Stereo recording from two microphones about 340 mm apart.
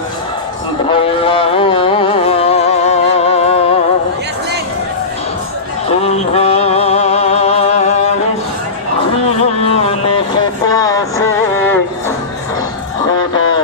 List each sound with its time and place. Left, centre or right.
0.8 s music: centre
5.9 s music: centre
9.4 s a sound: centre
10.7 s music: centre